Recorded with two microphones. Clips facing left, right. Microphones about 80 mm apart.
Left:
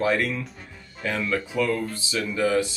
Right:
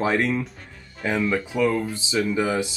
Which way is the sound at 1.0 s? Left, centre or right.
Centre.